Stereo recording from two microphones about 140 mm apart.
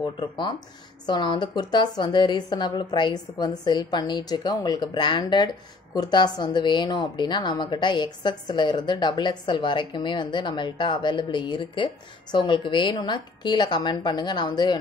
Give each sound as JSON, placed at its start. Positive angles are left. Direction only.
{"t": 0.0, "sound": "a woman's voice", "side_deg": 35}